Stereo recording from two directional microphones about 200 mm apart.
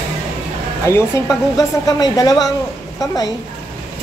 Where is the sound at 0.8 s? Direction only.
15° left (ahead or behind).